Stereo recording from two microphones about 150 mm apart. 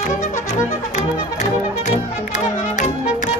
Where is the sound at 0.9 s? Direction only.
50° left (ahead or behind).